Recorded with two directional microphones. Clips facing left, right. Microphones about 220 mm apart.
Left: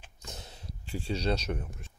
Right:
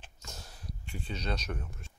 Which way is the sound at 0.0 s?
20° left (ahead or behind).